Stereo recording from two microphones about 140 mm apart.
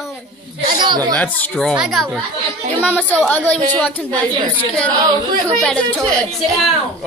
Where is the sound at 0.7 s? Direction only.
30° right (ahead or behind).